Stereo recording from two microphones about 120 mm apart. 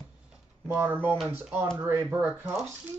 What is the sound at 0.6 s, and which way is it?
Speech, 15° right (ahead or behind).